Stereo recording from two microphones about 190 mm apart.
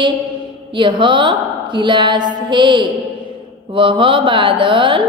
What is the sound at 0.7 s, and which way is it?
A woman's voice, 25° right (ahead or behind).